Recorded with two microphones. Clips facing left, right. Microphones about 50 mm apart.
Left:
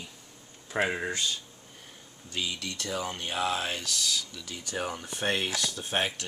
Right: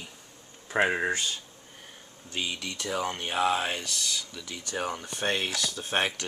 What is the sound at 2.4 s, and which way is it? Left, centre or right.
Speech, centre.